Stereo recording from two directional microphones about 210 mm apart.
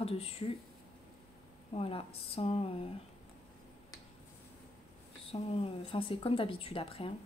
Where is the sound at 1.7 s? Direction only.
25° left (ahead or behind).